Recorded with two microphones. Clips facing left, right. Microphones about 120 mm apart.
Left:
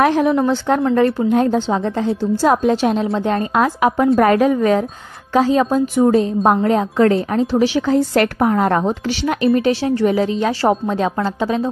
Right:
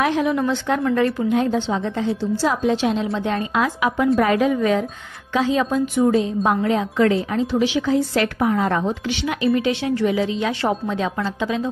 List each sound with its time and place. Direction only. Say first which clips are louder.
0.0 s a woman's voice: left 5 dB; 45° left (ahead or behind)
1.3 s a woman's voice: left 4 dB; 45° left (ahead or behind)
9.7 s a woman's voice: left 4 dB; 35° left (ahead or behind)